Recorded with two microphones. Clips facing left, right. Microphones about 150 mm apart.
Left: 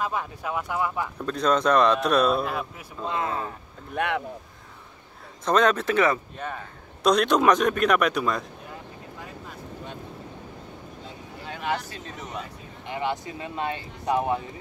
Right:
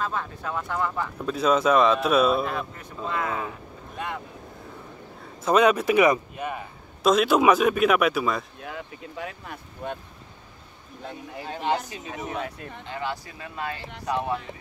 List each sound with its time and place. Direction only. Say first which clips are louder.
0.0 s speech: left 1 dB; 15° left (ahead or behind)
1.2 s speech: right 1 dB; 5° right (ahead or behind)
3.1 s speech: even; 25° left (ahead or behind)
3.9 s speech: left 7 dB; 70° left (ahead or behind)
5.4 s a man's voice: right 2 dB; 10° right (ahead or behind)
8.6 s speech: right 4 dB; 90° right; by 9.9 s 75° right (ahead or behind)
11.4 s speech: right 3 dB; 30° right (ahead or behind)
12.8 s speech: left 4 dB; 20° left (ahead or behind)